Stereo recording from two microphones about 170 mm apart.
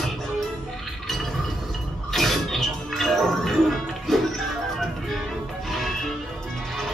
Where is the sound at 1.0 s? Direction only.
Centre (ahead or behind).